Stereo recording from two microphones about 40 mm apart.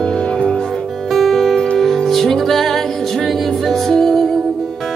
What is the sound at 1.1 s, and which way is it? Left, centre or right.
Music, centre.